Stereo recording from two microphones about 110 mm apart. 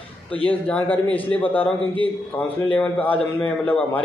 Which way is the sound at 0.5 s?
15° left (ahead or behind).